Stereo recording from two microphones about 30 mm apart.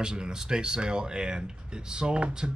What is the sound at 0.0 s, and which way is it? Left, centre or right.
Speech, right.